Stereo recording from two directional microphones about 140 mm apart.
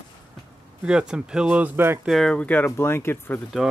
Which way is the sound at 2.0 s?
Centre (ahead or behind).